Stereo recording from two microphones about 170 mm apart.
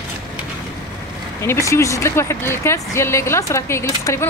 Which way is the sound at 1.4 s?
15° left (ahead or behind).